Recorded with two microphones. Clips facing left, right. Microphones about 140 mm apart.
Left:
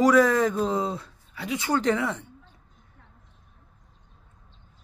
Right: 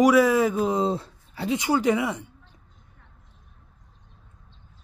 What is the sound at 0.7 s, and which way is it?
Speech, 30° right (ahead or behind).